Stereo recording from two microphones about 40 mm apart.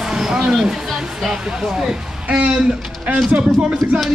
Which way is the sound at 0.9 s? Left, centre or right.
Centre.